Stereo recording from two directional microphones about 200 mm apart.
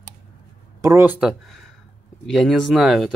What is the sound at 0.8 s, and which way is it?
Speech, 15° right (ahead or behind).